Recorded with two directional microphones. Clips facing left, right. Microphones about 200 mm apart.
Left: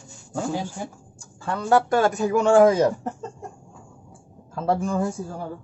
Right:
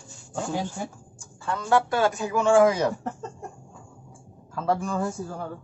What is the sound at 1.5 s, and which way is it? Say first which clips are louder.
A man's voice: left 3 dB; 35° left (ahead or behind).